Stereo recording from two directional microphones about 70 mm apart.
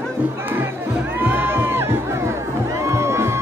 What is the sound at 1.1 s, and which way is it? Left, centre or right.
Crowd, right.